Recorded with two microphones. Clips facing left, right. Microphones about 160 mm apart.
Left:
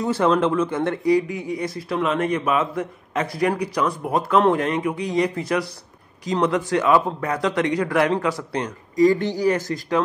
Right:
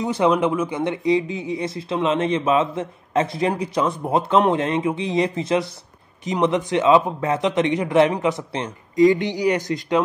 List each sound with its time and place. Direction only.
0.0 s a man's voice: 15° right (ahead or behind)